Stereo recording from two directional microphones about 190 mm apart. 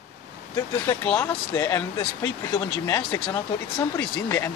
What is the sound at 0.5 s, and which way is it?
Speech, 15° left (ahead or behind).